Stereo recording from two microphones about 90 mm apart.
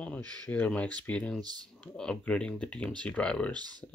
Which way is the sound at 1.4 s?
50° right (ahead or behind).